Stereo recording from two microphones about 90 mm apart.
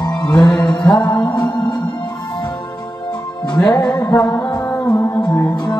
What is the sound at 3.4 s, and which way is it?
Music, 50° left (ahead or behind).